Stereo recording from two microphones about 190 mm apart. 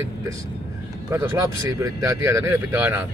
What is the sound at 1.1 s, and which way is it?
Speech, 15° right (ahead or behind).